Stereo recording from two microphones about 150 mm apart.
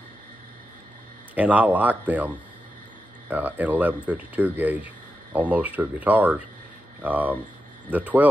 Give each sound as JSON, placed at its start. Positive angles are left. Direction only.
{"t": 1.3, "sound": "speech", "side_deg": -10}